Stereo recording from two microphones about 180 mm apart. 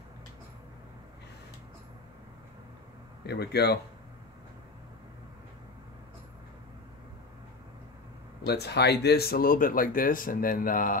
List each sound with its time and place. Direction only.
3.3 s speech: 65° left (ahead or behind)
8.5 s speech: 65° left (ahead or behind)